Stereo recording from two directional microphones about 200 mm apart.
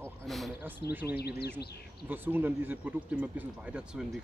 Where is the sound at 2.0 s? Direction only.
10° right (ahead or behind).